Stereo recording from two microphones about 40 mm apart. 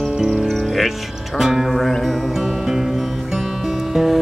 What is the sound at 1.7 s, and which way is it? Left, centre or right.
Music, centre.